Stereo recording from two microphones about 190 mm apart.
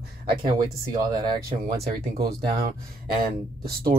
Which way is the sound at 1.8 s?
55° right (ahead or behind).